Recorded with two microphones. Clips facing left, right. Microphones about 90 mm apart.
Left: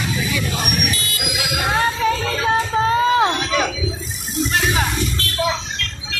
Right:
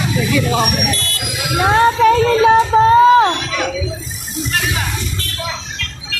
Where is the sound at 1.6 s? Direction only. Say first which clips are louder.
Right 8 dB; 60° right (ahead or behind).